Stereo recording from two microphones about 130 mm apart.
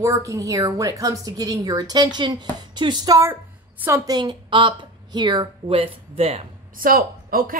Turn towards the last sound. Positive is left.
turn(degrees=-90)